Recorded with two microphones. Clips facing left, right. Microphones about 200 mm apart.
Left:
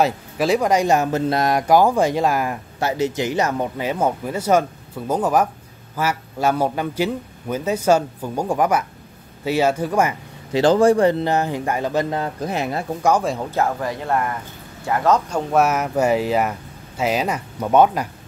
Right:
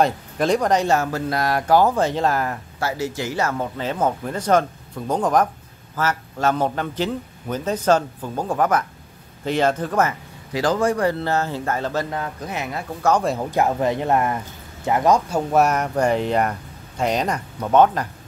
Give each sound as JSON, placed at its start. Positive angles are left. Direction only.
{"t": 0.0, "sound": "speech", "side_deg": 5}
{"t": 10.5, "sound": "speech", "side_deg": 30}
{"t": 12.2, "sound": "speech", "side_deg": 30}
{"t": 13.4, "sound": "speech", "side_deg": -15}